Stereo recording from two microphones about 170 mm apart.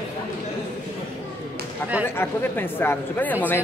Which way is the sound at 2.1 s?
10° left (ahead or behind).